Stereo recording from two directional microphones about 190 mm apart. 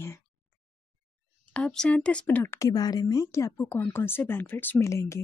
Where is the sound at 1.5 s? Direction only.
5° left (ahead or behind).